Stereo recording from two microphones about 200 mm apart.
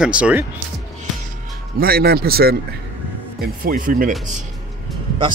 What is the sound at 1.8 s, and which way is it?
Speech, 50° right (ahead or behind).